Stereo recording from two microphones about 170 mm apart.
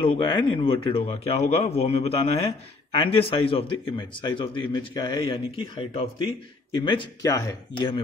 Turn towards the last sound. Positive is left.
turn(degrees=25)  # may be behind; listen again after turning